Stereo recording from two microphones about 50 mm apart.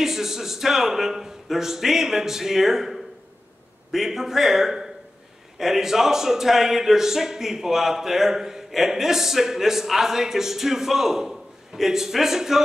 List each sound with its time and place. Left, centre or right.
0.0 s a man's voice: centre